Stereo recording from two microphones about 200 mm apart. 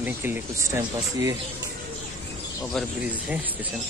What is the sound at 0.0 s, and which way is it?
Speech, 10° right (ahead or behind).